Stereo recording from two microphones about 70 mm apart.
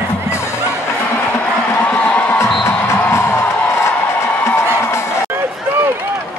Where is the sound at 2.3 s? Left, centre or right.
Left.